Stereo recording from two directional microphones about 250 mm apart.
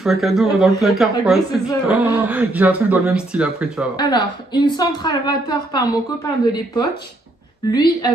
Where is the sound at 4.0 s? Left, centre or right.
Centre.